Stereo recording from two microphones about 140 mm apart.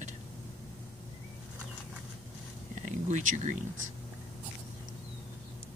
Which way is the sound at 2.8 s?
65° right (ahead or behind).